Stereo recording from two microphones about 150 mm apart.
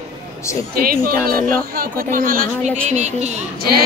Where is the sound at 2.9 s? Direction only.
50° right (ahead or behind).